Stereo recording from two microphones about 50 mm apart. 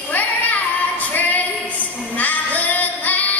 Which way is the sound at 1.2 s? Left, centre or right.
Left.